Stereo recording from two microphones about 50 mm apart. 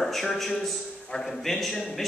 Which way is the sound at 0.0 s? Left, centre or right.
Centre.